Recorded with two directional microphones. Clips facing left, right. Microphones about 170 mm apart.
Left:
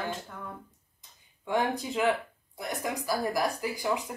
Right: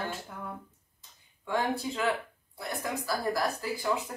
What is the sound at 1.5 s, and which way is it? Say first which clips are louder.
Speech: left 1 dB; 15° left (ahead or behind).